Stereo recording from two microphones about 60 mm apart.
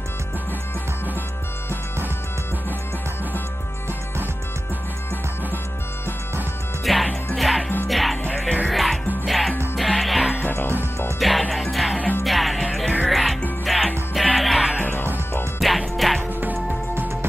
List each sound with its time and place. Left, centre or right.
6.8 s music: centre
10.4 s music: left
11.1 s music: centre
14.8 s music: left
15.6 s music: centre
16.9 s music: right